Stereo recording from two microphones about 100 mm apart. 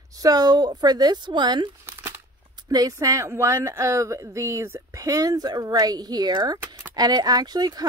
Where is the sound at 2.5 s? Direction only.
40° right (ahead or behind).